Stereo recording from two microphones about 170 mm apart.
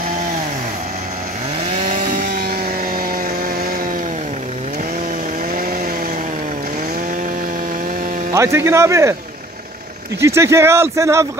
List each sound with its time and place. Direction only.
8.3 s speech: 15° right (ahead or behind)
10.2 s speech: 15° right (ahead or behind)